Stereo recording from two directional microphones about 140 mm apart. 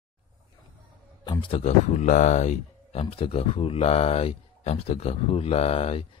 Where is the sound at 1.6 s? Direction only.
55° left (ahead or behind).